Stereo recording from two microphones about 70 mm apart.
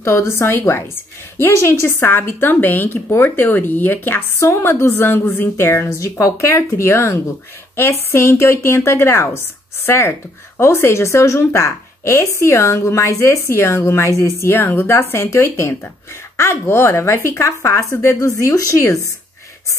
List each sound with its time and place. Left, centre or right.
0.0 s a woman's voice: left
6.5 s a woman's voice: left